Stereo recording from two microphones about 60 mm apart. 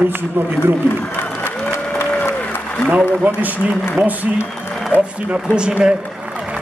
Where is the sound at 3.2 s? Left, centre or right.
Right.